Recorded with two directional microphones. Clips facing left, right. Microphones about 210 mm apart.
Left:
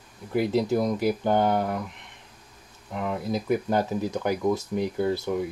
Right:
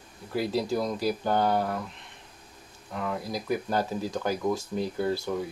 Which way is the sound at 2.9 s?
20° left (ahead or behind).